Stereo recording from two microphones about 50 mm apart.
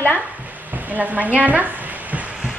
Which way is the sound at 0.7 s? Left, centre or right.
Right.